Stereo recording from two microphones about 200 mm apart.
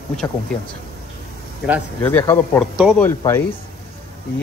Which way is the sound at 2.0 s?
10° left (ahead or behind).